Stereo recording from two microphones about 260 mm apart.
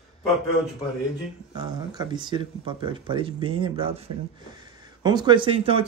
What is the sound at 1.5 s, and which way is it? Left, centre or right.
Speech, centre.